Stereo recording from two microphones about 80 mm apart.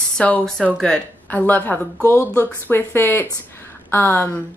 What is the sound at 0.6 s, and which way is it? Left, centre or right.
Speech, centre.